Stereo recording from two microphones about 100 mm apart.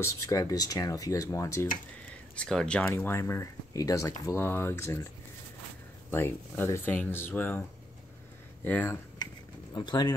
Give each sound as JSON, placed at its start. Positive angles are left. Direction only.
{"t": 0.0, "sound": "speech", "side_deg": 35}
{"t": 2.3, "sound": "speech", "side_deg": 10}
{"t": 3.0, "sound": "speech", "side_deg": 25}
{"t": 6.1, "sound": "speech", "side_deg": 20}
{"t": 8.6, "sound": "speech", "side_deg": 20}
{"t": 9.8, "sound": "speech", "side_deg": 45}